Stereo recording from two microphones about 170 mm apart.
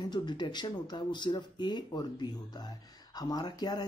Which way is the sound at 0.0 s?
25° left (ahead or behind).